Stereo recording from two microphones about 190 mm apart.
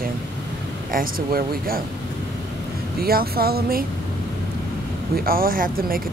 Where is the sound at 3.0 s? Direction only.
55° right (ahead or behind).